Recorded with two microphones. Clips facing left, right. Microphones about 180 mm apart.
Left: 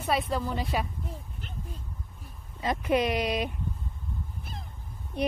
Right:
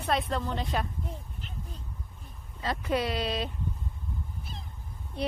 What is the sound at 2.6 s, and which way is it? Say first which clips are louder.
Speech: left 3 dB; 20° left (ahead or behind).